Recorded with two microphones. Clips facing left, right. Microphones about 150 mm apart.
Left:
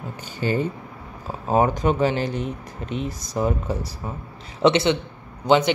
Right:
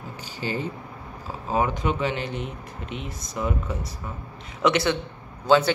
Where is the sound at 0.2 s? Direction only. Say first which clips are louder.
Left 6 dB; 50° left (ahead or behind); by 3.9 s 35° left (ahead or behind).